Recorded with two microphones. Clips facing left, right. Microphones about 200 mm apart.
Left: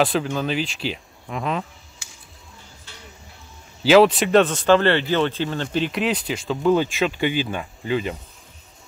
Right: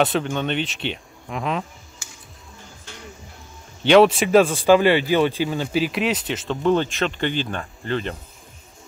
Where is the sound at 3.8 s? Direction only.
Centre (ahead or behind).